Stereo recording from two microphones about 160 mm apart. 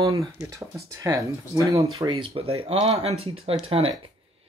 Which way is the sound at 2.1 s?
35° right (ahead or behind).